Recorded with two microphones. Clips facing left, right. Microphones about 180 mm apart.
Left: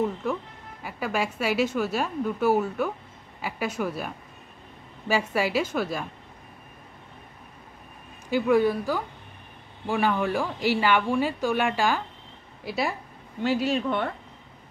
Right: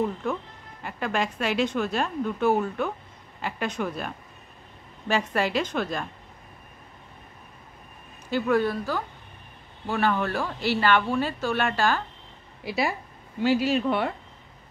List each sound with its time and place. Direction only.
0.0 s speech: 5° left (ahead or behind)
8.3 s speech: 10° left (ahead or behind)
12.6 s speech: centre (ahead or behind)